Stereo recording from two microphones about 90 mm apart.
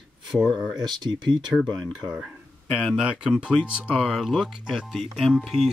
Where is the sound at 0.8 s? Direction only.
55° right (ahead or behind).